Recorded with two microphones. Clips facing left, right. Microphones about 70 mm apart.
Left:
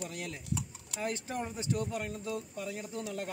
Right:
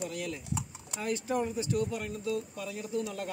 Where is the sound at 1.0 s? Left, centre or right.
Left.